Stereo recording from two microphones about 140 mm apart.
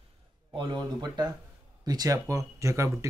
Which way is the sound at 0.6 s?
30° right (ahead or behind).